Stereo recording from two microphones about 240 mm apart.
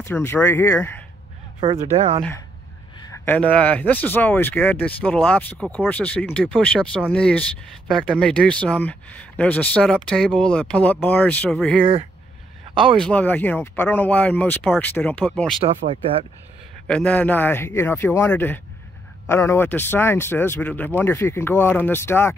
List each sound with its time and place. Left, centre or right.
0.0 s speech: centre
1.6 s speech: right
3.3 s speech: centre
11.8 s speech: right
13.0 s speech: centre
15.6 s speech: right
16.8 s speech: centre